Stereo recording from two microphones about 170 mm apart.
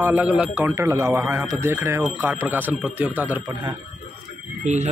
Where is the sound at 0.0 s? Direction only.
10° right (ahead or behind).